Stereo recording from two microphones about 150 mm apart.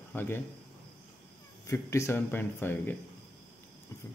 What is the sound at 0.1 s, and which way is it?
Speech, 15° left (ahead or behind).